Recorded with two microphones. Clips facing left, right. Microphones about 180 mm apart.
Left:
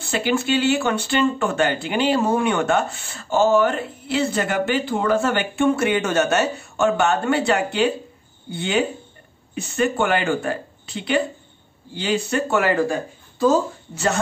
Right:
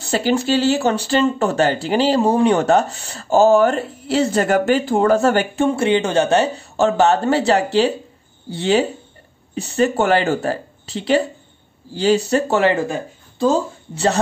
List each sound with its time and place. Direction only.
0.1 s speech: 40° right (ahead or behind)